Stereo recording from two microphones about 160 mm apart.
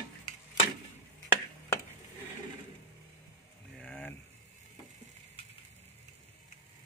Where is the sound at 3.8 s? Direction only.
5° left (ahead or behind).